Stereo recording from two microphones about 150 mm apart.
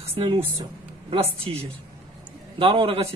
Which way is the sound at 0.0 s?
40° right (ahead or behind).